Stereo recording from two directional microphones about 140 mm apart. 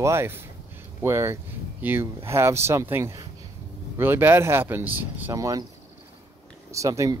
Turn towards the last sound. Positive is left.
turn(degrees=-25)  # may be behind; listen again after turning